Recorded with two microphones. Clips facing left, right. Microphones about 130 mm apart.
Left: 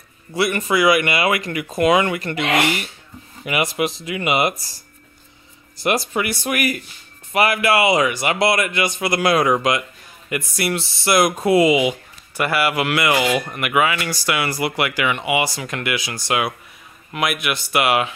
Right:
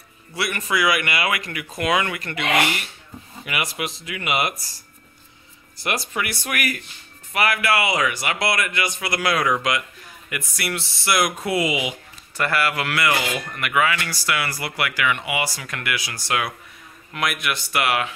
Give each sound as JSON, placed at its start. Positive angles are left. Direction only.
{"t": 0.3, "sound": "speech", "side_deg": 25}
{"t": 3.4, "sound": "speech", "side_deg": 25}
{"t": 5.9, "sound": "speech", "side_deg": 25}
{"t": 12.4, "sound": "speech", "side_deg": 10}